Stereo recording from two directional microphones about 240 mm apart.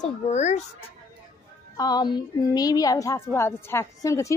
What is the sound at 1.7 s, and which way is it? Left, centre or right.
A woman's voice, centre.